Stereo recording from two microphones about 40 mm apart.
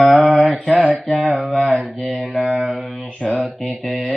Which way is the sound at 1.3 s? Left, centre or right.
Centre.